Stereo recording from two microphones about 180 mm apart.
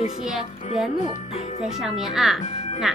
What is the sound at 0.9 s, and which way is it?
Speech, 40° left (ahead or behind).